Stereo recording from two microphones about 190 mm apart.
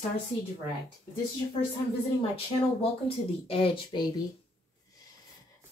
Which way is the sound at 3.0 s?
30° left (ahead or behind).